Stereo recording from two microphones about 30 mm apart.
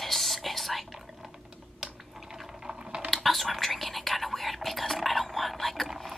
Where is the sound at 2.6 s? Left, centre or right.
Right.